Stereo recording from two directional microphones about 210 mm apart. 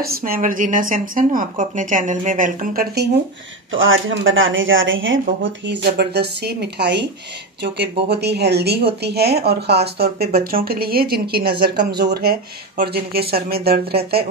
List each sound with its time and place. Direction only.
0.0 s speech: 45° right (ahead or behind)
3.7 s speech: 70° right (ahead or behind)
5.4 s speech: 55° right (ahead or behind)